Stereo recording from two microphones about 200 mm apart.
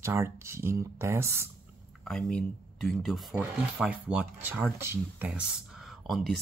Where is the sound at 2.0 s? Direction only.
5° left (ahead or behind).